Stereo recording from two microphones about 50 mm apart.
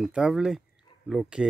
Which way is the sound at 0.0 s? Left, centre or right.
Centre.